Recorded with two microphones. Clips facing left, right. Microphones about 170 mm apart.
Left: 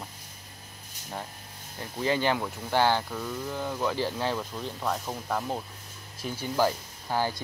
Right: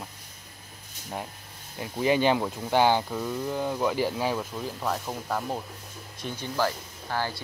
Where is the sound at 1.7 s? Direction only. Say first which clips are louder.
Right 4 dB; 15° right (ahead or behind).